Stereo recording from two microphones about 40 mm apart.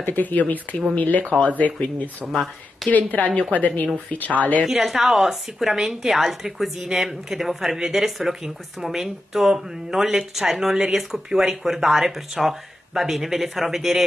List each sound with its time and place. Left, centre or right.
0.0 s a woman's voice: left
2.2 s speech: centre
2.9 s a woman's voice: left
4.6 s speech: centre